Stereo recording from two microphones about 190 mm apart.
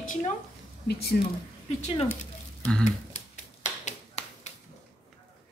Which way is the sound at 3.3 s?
35° left (ahead or behind).